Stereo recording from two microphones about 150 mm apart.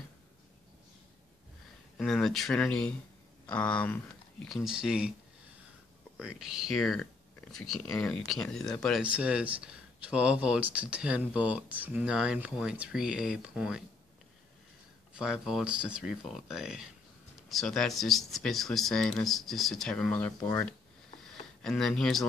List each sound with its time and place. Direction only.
2.0 s speech: 5° left (ahead or behind)
6.2 s speech: 5° right (ahead or behind)
9.0 s speech: 10° right (ahead or behind)
15.1 s speech: 5° right (ahead or behind)
20.3 s speech: 25° left (ahead or behind)
21.6 s speech: 5° left (ahead or behind)